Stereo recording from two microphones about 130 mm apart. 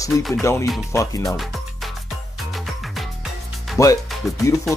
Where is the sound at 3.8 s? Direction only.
25° left (ahead or behind).